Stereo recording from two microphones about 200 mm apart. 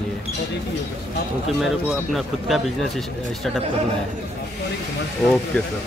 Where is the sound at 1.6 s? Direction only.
Centre (ahead or behind).